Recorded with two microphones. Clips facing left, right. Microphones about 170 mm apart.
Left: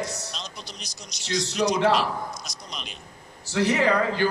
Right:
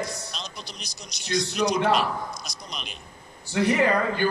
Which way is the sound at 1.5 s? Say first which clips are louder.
Left 2 dB; 55° right (ahead or behind).